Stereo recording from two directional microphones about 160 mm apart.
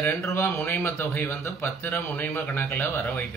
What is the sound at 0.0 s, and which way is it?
Speech, 15° left (ahead or behind).